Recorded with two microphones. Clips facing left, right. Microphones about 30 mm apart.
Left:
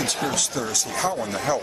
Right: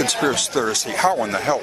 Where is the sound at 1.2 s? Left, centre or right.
Right.